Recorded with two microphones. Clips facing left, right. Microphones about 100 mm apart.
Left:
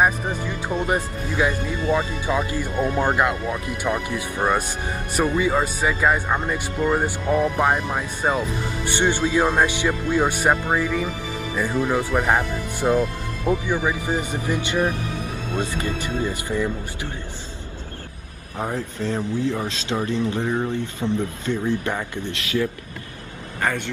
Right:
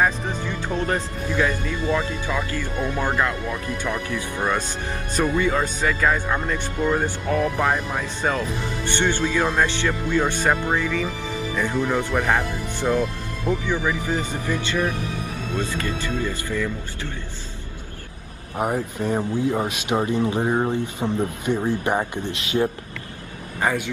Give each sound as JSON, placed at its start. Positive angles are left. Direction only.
{"t": 0.0, "sound": "speech", "side_deg": 15}
{"t": 18.6, "sound": "speech", "side_deg": -15}